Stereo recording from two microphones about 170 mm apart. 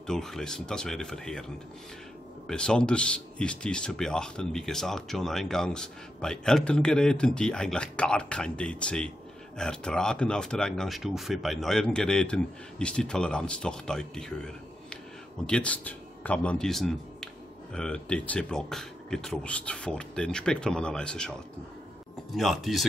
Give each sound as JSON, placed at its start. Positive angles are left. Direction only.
{"t": 0.0, "sound": "a man's voice", "side_deg": 5}
{"t": 2.4, "sound": "a man's voice", "side_deg": 5}